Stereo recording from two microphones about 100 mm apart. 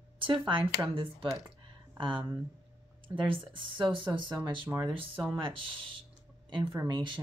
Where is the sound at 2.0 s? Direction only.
55° right (ahead or behind).